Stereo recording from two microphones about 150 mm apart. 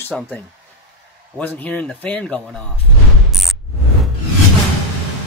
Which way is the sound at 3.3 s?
Centre (ahead or behind).